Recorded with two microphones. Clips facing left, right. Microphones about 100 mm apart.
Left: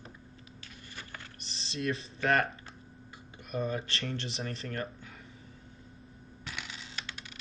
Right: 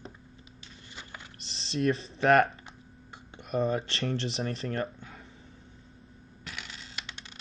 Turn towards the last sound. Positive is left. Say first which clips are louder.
# even
turn(degrees=0)  # may be behind; listen again after turning